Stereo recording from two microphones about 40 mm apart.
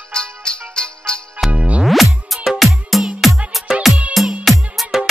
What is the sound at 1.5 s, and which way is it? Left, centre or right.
Music, right.